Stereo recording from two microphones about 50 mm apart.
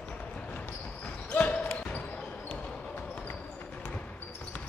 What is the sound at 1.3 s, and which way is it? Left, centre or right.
Basketball bounce, left.